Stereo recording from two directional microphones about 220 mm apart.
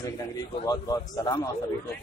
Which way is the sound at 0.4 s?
15° left (ahead or behind).